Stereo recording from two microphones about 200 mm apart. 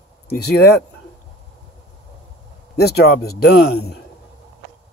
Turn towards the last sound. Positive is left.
turn(degrees=55)  # may be behind; listen again after turning